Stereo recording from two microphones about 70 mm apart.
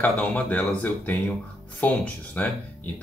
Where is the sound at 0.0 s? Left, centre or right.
Left.